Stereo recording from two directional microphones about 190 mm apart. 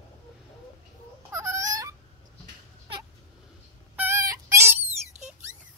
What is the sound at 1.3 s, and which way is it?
Goose, 15° right (ahead or behind).